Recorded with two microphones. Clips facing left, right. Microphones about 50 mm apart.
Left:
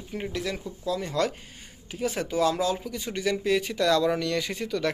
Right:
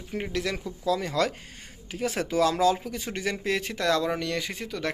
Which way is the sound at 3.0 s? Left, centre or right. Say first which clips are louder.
Left 5 dB; right.